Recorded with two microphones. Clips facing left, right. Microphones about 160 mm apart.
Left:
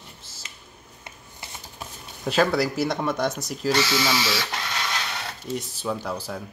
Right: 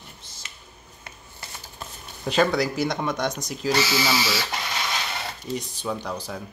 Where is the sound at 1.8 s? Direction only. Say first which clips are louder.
Even; 5° left (ahead or behind).